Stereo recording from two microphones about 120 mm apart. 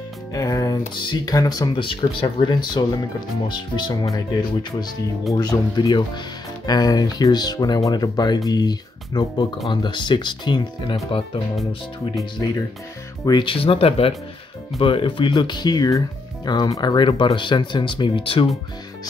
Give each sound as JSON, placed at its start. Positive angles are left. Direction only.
{"t": 0.3, "sound": "speech", "side_deg": 30}
{"t": 1.8, "sound": "speech", "side_deg": 45}
{"t": 13.2, "sound": "speech", "side_deg": 40}